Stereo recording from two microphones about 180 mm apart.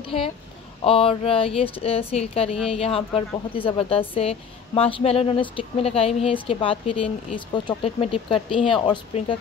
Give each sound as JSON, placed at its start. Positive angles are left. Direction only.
{"t": 0.8, "sound": "speech", "side_deg": 30}